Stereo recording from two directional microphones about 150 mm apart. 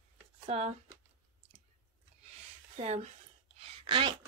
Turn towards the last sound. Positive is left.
turn(degrees=-35)  # may be behind; listen again after turning